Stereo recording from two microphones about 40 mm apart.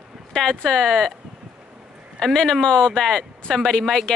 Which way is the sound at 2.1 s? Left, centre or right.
Centre.